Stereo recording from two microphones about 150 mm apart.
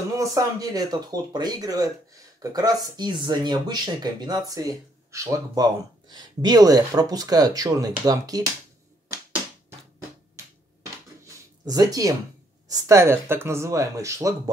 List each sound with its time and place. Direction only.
0.2 s speech: 20° right (ahead or behind)
11.7 s speech: 25° right (ahead or behind)